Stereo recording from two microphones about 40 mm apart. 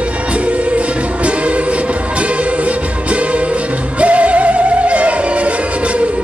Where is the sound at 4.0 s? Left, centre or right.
Right.